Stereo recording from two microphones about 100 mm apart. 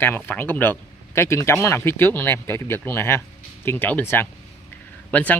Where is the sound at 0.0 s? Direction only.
20° left (ahead or behind).